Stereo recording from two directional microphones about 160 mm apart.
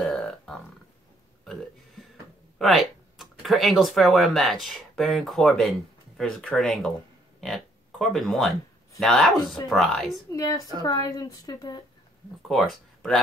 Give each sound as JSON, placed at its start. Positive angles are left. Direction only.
{"t": 0.0, "sound": "music", "side_deg": 0}
{"t": 1.4, "sound": "burping", "side_deg": 0}
{"t": 2.6, "sound": "speech", "side_deg": 0}
{"t": 10.3, "sound": "a woman's voice", "side_deg": 20}
{"t": 12.4, "sound": "speech", "side_deg": 0}